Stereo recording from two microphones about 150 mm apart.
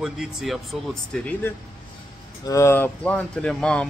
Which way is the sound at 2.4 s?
20° left (ahead or behind).